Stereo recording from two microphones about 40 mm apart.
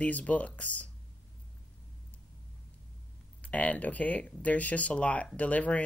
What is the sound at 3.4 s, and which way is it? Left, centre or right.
Speech, left.